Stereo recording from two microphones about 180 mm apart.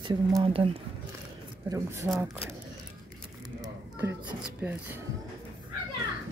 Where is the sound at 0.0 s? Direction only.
25° right (ahead or behind).